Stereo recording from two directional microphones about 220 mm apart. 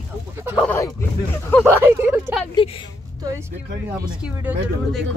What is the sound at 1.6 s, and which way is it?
Speech, 10° right (ahead or behind).